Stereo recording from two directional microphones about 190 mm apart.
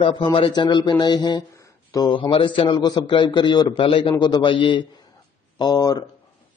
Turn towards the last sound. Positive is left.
turn(degrees=20)  # may be behind; listen again after turning